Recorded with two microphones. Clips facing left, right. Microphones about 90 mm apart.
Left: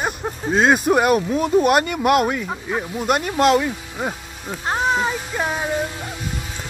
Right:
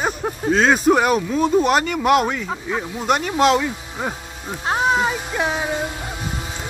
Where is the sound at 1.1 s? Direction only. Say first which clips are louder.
Even; 25° right (ahead or behind).